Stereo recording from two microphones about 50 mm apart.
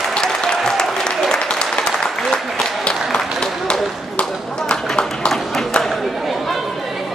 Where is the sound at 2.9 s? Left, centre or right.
Centre.